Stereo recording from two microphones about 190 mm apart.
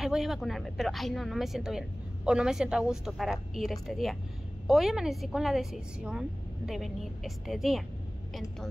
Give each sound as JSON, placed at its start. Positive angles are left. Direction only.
{"t": 0.0, "sound": "a woman's voice", "side_deg": 0}